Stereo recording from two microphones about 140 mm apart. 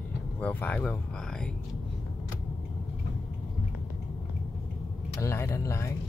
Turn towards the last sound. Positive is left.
turn(degrees=20)  # may be behind; listen again after turning